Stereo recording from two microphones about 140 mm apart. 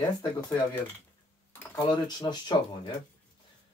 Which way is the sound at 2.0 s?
30° left (ahead or behind).